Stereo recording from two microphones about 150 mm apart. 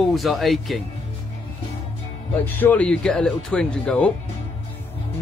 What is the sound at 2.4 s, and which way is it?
Speech, 10° left (ahead or behind).